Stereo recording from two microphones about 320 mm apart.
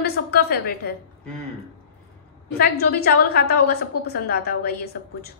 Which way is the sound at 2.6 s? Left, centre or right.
Left.